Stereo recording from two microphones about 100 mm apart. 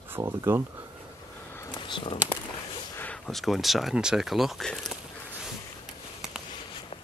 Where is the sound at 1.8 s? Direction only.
60° left (ahead or behind).